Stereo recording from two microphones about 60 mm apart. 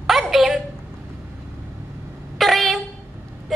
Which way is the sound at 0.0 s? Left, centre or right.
Centre.